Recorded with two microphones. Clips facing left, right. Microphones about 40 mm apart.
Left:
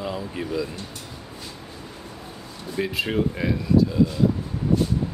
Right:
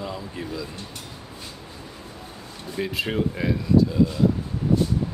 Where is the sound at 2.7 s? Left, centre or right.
Centre.